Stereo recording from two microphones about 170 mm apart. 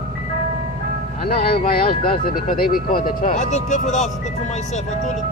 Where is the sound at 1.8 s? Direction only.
60° left (ahead or behind).